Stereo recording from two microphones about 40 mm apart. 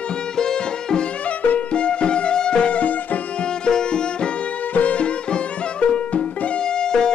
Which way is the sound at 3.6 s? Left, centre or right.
Left.